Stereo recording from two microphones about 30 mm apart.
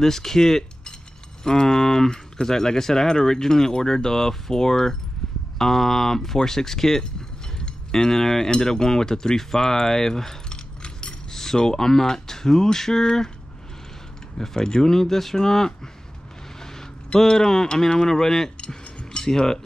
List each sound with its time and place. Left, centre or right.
0.0 s speech: centre
7.5 s chink: centre
8.5 s speech: left
10.5 s keys jangling: left
11.3 s speech: centre
14.4 s speech: centre